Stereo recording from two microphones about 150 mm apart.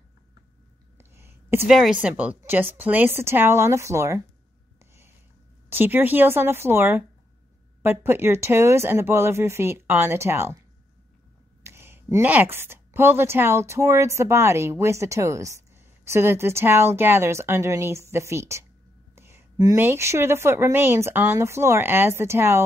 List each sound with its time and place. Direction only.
0.9 s a sound: 15° right (ahead or behind)
1.7 s a woman's voice: 5° right (ahead or behind); by 4.2 s 20° right (ahead or behind)
5.7 s a woman's voice: 15° right (ahead or behind)
11.6 s a woman's voice: 15° right (ahead or behind)